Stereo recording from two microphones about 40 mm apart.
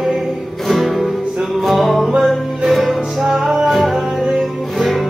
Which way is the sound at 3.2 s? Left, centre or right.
Centre.